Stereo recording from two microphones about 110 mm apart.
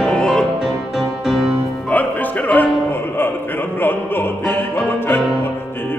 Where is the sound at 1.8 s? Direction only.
15° left (ahead or behind).